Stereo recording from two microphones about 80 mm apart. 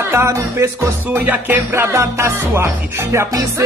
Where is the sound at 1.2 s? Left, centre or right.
Right.